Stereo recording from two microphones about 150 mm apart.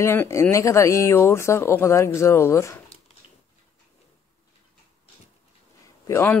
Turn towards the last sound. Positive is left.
turn(degrees=15)  # may be behind; listen again after turning